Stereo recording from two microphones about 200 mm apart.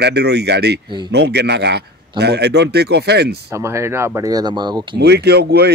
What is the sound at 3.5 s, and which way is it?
Speech, 15° right (ahead or behind).